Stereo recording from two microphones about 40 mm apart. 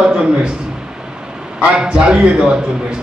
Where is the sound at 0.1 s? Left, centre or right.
Right.